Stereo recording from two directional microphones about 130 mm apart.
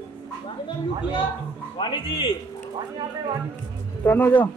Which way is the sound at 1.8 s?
40° left (ahead or behind).